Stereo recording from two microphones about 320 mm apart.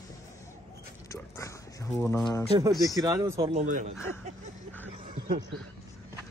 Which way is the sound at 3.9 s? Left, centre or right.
Centre.